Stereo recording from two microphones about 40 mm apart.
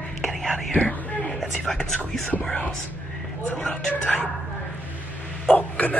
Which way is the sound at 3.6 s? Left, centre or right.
Left.